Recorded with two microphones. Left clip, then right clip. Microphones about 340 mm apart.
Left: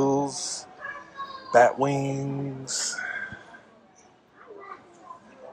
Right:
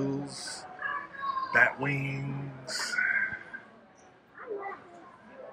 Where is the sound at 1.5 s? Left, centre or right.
Centre.